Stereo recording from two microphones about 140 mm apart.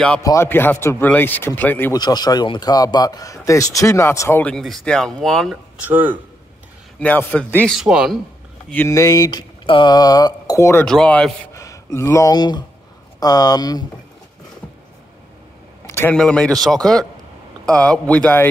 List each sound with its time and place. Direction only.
0.2 s speech: 20° left (ahead or behind)
2.0 s speech: 30° left (ahead or behind); by 5.6 s centre (ahead or behind)
5.8 s speech: 10° right (ahead or behind)
7.0 s speech: 10° left (ahead or behind); by 8.2 s 5° right (ahead or behind)
8.6 s speech: 10° left (ahead or behind)
8.9 s speech: 25° left (ahead or behind)
10.9 s a man's voice: 5° left (ahead or behind)
11.5 s speech: 20° left (ahead or behind)
15.9 s a sound: 15° left (ahead or behind)
16.2 s a man's voice: 5° left (ahead or behind)